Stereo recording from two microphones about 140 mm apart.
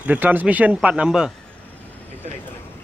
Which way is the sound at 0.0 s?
10° right (ahead or behind).